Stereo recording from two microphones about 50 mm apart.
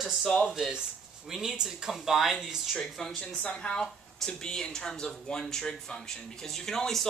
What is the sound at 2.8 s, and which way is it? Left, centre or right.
Speech, centre.